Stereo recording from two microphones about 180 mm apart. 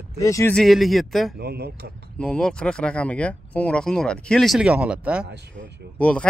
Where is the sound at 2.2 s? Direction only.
5° left (ahead or behind).